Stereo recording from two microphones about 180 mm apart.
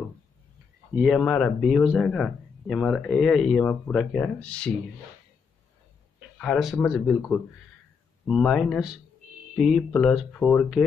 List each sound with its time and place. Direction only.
0.9 s speech: centre (ahead or behind)
6.3 s speech: 5° left (ahead or behind)